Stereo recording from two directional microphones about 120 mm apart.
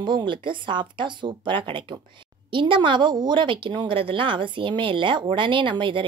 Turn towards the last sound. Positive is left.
turn(degrees=-45)  # may be behind; listen again after turning